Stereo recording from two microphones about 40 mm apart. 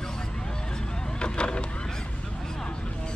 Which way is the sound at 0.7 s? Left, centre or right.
Left.